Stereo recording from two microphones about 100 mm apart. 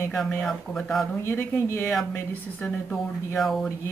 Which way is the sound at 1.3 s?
20° left (ahead or behind).